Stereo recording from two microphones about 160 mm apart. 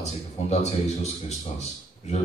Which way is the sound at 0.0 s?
45° left (ahead or behind).